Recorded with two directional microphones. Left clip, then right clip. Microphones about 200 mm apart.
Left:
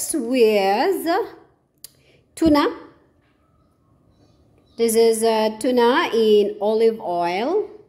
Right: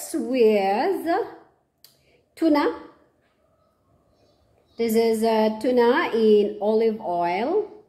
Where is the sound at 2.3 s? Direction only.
30° left (ahead or behind).